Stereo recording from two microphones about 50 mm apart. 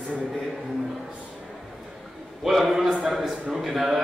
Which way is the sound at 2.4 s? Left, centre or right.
Centre.